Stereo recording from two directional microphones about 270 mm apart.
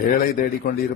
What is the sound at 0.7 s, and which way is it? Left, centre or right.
Speech, left.